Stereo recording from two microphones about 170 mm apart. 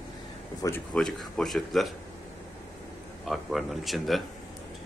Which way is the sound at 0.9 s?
5° left (ahead or behind).